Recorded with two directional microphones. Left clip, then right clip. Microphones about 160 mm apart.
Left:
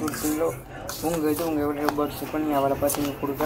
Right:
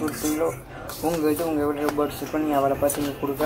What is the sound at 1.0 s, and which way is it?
Speech, 15° right (ahead or behind).